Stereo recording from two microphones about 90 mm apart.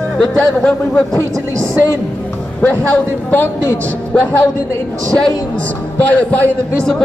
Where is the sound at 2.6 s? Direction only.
15° left (ahead or behind).